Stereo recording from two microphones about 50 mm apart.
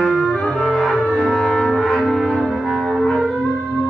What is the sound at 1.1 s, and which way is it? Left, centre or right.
Music, centre.